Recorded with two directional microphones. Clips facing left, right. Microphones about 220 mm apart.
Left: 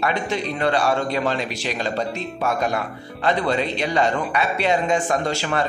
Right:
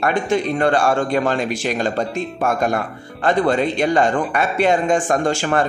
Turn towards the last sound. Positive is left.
turn(degrees=-50)  # may be behind; listen again after turning